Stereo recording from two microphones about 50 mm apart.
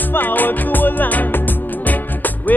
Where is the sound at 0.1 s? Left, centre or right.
Left.